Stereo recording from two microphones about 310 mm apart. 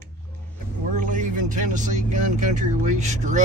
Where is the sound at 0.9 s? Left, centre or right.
Right.